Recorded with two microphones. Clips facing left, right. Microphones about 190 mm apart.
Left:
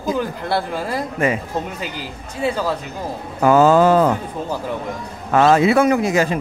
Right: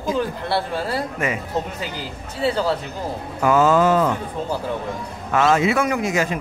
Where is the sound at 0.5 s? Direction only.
15° left (ahead or behind).